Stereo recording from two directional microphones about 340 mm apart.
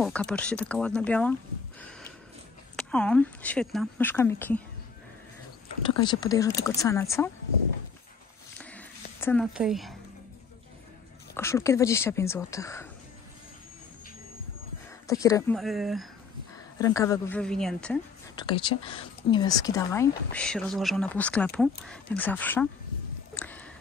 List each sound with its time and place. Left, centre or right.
0.0 s a woman's voice: centre
1.8 s sniff: centre
2.7 s a woman's voice: centre
5.9 s speech: centre
8.5 s a sound: centre
11.3 s speech: centre
15.0 s a woman's voice: centre
16.5 s a woman's voice: centre
23.3 s a sound: centre